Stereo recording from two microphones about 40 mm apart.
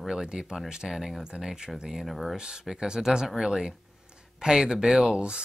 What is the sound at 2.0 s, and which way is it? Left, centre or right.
Speech, centre.